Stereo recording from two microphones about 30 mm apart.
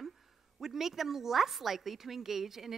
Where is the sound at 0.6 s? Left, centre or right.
Centre.